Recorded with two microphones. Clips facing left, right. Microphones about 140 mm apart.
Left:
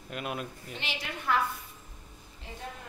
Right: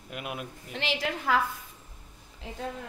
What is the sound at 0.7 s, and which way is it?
Speech, 90° right.